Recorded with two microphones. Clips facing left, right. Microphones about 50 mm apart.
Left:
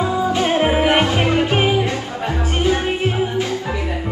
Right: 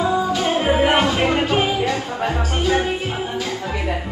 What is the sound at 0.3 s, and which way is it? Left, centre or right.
Music, left.